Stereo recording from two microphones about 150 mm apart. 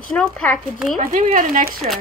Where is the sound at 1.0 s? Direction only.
65° right (ahead or behind).